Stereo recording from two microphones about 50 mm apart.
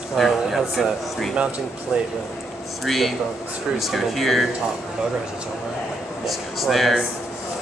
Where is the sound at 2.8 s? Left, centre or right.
Centre.